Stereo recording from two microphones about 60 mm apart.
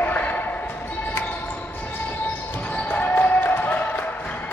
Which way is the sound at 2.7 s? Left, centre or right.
Left.